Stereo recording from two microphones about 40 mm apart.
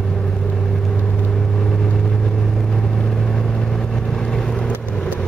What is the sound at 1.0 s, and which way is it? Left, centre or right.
Vehicle, left.